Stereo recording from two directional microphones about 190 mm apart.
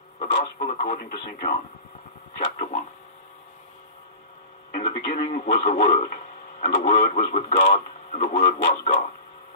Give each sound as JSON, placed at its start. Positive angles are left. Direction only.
{"t": 0.2, "sound": "speech", "side_deg": 40}
{"t": 4.7, "sound": "speech", "side_deg": 35}